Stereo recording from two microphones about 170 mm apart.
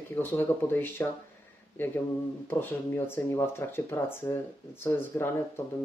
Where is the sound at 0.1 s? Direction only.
10° left (ahead or behind).